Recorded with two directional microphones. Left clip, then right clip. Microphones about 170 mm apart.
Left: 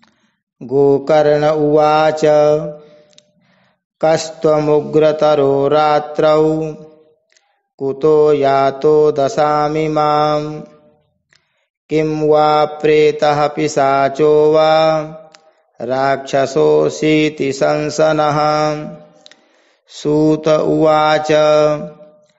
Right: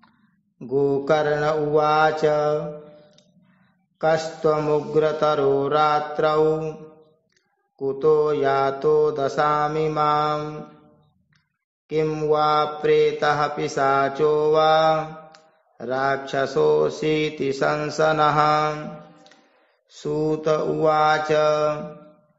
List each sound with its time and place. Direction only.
0.6 s mantra: 35° left (ahead or behind)
4.0 s mantra: 40° left (ahead or behind)
7.8 s mantra: 40° left (ahead or behind)
11.9 s mantra: 30° left (ahead or behind)
19.9 s mantra: 45° left (ahead or behind)